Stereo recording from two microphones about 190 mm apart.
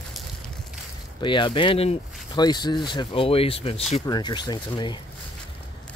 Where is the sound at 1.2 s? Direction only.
25° left (ahead or behind).